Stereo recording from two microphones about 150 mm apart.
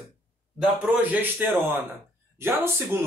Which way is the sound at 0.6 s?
5° right (ahead or behind).